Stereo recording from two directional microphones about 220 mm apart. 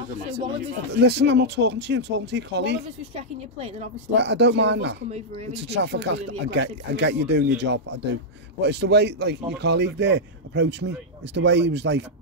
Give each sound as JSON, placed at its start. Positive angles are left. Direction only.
{"t": 0.9, "sound": "speech", "side_deg": -50}
{"t": 3.5, "sound": "speech", "side_deg": -30}
{"t": 4.1, "sound": "speech", "side_deg": -50}
{"t": 5.1, "sound": "speech", "side_deg": -30}
{"t": 5.5, "sound": "speech", "side_deg": -50}